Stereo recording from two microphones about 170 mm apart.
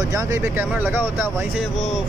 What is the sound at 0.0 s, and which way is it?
Speech, 20° right (ahead or behind).